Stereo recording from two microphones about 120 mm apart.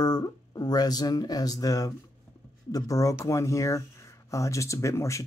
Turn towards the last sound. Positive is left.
turn(degrees=25)  # may be behind; listen again after turning